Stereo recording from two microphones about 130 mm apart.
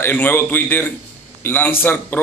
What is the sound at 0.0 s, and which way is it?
A man's voice, 15° left (ahead or behind).